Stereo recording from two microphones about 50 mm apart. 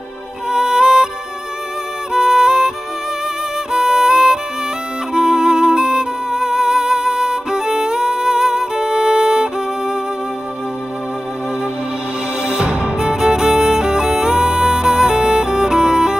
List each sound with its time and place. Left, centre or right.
0.5 s music: centre
2.1 s music: centre
3.7 s music: centre
12.5 s music: centre